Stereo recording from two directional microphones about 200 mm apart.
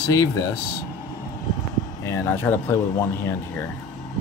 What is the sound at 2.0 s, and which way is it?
Speech, 10° left (ahead or behind).